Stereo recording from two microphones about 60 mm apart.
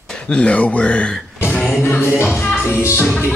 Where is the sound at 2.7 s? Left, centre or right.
Left.